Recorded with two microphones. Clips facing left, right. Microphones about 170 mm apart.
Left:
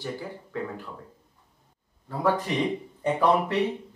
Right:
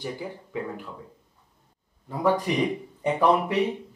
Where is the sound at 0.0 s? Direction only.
15° right (ahead or behind).